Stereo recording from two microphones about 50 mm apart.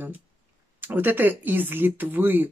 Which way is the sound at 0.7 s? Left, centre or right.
Right.